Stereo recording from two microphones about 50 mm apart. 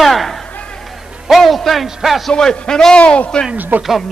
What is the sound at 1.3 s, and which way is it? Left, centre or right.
A man's voice, centre.